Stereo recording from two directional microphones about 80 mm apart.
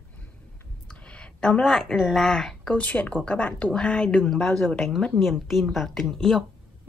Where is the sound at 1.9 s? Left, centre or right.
Centre.